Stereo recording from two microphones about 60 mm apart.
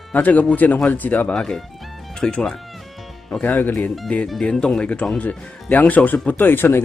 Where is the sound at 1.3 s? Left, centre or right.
Centre.